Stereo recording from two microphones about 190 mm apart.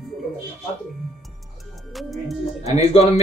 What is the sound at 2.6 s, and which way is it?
Speech, 35° left (ahead or behind).